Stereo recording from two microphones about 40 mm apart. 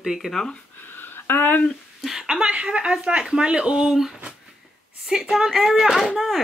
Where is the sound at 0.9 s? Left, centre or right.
Left.